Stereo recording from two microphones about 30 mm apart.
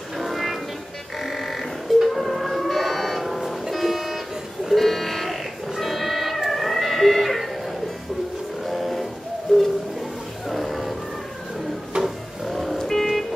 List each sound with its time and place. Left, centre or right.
0.2 s music: centre
1.2 s a sound: centre
3.2 s music: centre
3.7 s vehicle: centre
4.7 s music: centre
8.6 s a sound: centre
9.5 s bird: left
10.5 s music: centre
11.9 s a sound: right
12.4 s music: centre
12.7 s vehicle: centre